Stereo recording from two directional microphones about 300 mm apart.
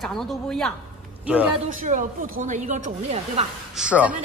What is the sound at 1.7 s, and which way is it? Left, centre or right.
A woman's voice, right.